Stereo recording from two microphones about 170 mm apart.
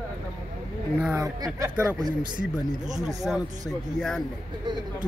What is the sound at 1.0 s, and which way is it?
Speech, 10° right (ahead or behind).